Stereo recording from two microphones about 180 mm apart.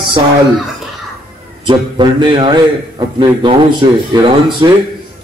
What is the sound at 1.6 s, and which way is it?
Speech, 25° right (ahead or behind).